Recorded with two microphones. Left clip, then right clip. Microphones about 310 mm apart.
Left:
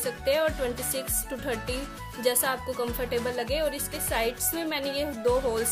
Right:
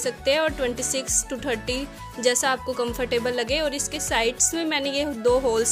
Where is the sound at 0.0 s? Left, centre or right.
Right.